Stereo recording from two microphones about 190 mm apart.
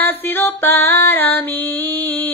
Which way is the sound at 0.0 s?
10° left (ahead or behind).